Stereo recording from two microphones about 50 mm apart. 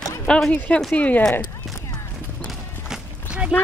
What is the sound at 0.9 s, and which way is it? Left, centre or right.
Speech, left.